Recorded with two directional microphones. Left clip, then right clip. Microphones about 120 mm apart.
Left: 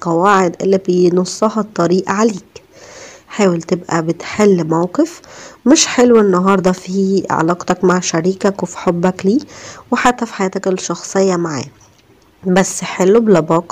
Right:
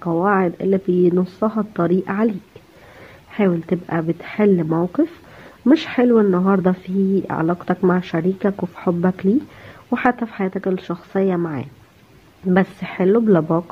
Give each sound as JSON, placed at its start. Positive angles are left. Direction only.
{"t": 0.0, "sound": "speech", "side_deg": 25}
{"t": 3.3, "sound": "speech", "side_deg": 20}